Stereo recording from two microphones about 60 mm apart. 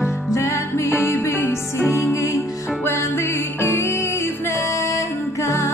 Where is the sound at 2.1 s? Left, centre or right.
Left.